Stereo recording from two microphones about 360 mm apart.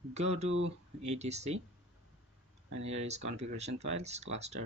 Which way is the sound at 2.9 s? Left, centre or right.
Centre.